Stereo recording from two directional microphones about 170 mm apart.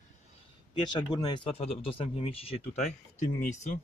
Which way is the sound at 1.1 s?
25° left (ahead or behind).